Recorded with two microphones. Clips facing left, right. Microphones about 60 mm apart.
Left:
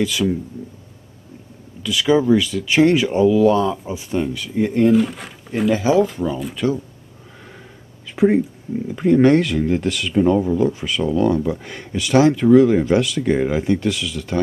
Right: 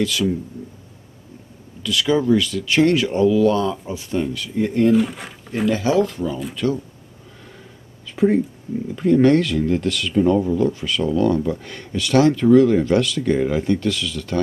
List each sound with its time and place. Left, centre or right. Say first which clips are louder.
1.8 s speech: left 2 dB; centre
4.9 s speech: left 1 dB; centre
5.5 s speech: left 2 dB; centre
8.9 s speech: left 1 dB; centre